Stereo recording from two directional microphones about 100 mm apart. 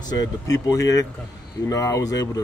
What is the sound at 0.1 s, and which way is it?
Speech, 40° left (ahead or behind).